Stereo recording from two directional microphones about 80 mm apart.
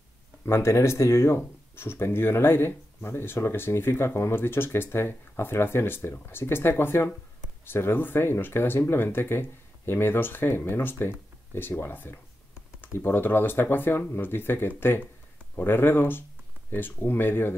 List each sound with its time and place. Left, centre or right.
0.5 s speech: left